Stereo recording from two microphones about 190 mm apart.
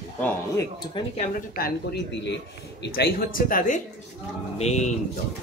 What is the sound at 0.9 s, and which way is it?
Speech, 30° left (ahead or behind).